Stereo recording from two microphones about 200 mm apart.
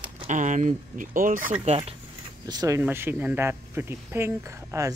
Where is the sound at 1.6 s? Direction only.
30° right (ahead or behind).